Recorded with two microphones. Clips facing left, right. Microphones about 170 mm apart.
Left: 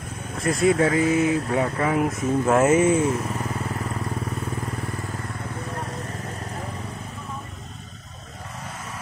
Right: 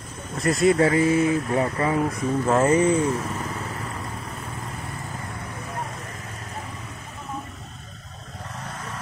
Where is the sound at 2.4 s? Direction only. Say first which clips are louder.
Left 1 dB; 5° left (ahead or behind).